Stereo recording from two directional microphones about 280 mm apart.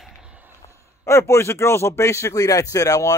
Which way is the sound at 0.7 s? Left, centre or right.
Centre.